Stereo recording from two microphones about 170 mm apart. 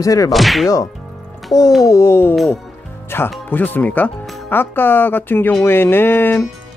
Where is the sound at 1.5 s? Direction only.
25° left (ahead or behind).